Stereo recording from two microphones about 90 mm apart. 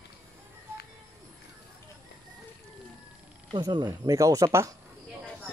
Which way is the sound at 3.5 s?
55° right (ahead or behind).